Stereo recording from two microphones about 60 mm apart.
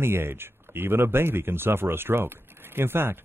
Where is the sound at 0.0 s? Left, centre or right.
Right.